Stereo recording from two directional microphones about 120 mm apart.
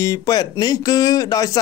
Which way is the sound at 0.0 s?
30° left (ahead or behind).